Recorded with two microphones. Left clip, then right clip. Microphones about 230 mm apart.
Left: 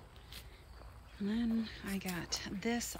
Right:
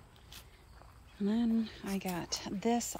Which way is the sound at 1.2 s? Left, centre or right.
Centre.